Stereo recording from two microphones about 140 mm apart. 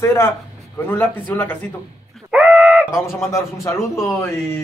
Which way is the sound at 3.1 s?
20° left (ahead or behind).